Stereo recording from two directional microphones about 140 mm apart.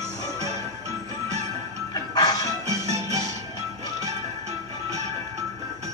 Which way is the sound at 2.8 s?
50° right (ahead or behind).